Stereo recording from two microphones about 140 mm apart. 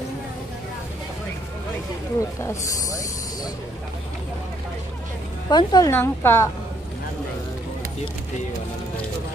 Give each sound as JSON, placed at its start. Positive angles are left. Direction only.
{"t": 5.5, "sound": "speech", "side_deg": 30}
{"t": 5.9, "sound": "a woman's voice", "side_deg": 15}